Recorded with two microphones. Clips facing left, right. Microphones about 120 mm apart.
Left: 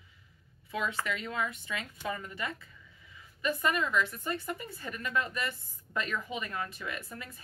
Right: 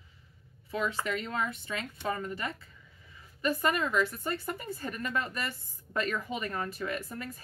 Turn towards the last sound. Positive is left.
turn(degrees=-40)  # may be behind; listen again after turning